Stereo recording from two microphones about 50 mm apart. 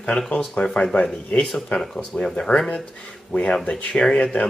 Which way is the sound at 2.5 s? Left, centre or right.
Left.